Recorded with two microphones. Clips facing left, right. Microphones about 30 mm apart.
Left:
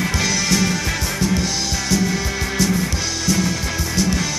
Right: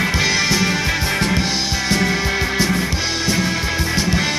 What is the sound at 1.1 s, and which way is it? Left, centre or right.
Music, right.